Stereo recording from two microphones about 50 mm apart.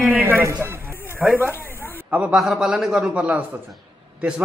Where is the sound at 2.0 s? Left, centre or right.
Right.